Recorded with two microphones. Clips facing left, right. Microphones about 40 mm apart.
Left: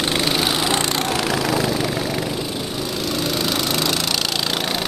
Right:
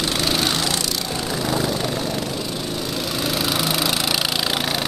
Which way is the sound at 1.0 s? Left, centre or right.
Left.